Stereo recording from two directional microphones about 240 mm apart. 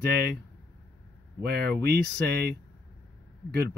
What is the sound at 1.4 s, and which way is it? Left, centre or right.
Speech, right.